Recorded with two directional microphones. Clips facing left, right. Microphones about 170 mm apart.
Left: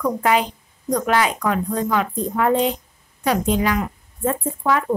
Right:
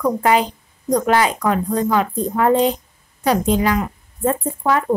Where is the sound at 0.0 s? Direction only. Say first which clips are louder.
Right 3 dB; 35° right (ahead or behind).